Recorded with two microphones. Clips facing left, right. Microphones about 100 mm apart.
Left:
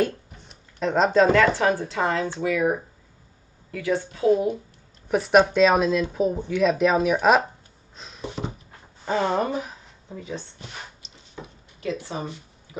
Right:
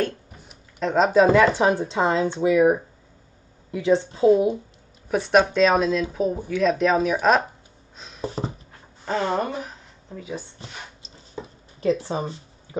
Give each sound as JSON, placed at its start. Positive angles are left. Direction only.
{"t": 0.5, "sound": "speech", "side_deg": 0}
{"t": 5.0, "sound": "speech", "side_deg": 0}
{"t": 8.4, "sound": "a sound", "side_deg": -35}
{"t": 9.0, "sound": "speech", "side_deg": 5}
{"t": 11.8, "sound": "speech", "side_deg": -35}